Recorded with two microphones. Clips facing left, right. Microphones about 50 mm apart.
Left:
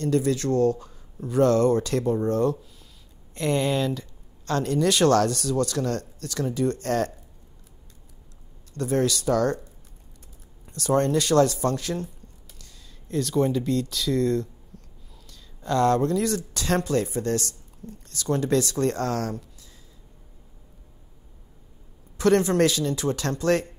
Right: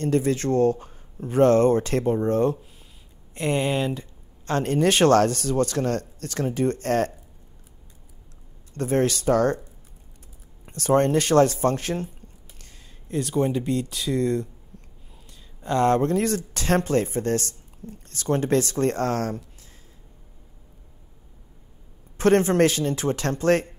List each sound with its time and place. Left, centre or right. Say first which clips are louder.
0.0 s speech: right 1 dB; right
8.7 s speech: right 1 dB; right
10.6 s speech: right 3 dB; right
13.1 s speech: even; right
22.2 s speech: right 2 dB; right